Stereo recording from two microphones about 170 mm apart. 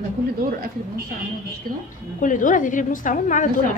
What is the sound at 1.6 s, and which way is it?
Speech, 55° right (ahead or behind).